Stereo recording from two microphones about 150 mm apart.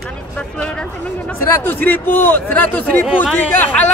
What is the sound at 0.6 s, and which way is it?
A man's voice, 5° left (ahead or behind).